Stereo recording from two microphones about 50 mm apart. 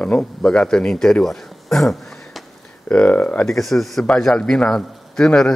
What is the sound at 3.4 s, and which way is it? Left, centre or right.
A man's voice, centre.